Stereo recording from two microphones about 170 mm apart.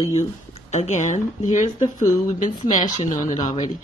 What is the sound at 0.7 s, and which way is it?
Speech, 45° left (ahead or behind).